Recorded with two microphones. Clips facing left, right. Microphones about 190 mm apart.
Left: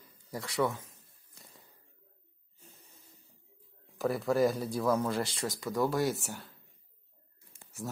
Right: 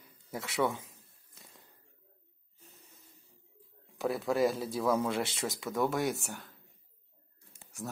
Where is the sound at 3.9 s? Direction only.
Centre (ahead or behind).